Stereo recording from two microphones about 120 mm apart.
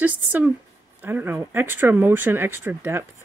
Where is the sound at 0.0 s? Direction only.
15° right (ahead or behind).